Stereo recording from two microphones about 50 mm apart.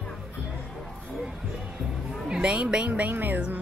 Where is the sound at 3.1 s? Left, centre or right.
Right.